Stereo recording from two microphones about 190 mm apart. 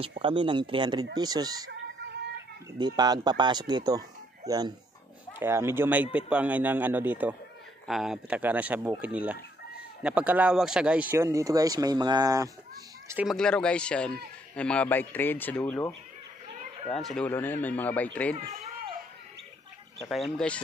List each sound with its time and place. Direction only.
0.2 s speech: 25° right (ahead or behind)
2.8 s speech: 20° right (ahead or behind)
13.1 s speech: 5° right (ahead or behind)
16.9 s speech: centre (ahead or behind)
20.0 s speech: centre (ahead or behind)